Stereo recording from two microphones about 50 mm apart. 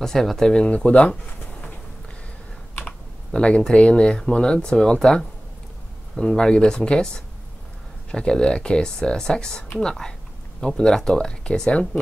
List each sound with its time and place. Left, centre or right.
0.0 s speech: centre
0.7 s speech: left
3.3 s speech: centre